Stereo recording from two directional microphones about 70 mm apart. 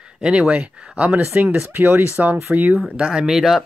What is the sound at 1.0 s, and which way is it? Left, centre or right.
Speech, right.